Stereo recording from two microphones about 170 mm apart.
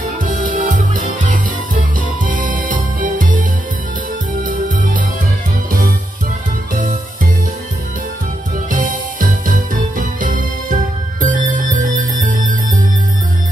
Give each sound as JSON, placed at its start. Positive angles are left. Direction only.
{"t": 0.2, "sound": "music", "side_deg": -55}
{"t": 8.6, "sound": "music", "side_deg": -55}